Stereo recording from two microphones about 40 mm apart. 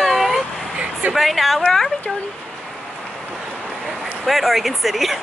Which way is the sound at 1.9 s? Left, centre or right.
Left.